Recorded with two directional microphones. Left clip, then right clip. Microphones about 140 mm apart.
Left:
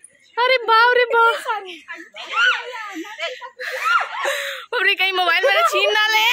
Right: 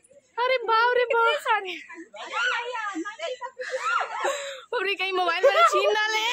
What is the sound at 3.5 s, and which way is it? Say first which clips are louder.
Speech: left 7 dB; 25° left (ahead or behind).